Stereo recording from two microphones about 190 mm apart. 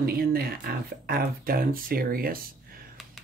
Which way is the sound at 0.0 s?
55° right (ahead or behind).